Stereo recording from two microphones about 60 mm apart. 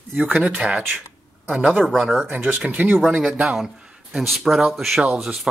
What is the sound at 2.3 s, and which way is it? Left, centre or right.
Speech, right.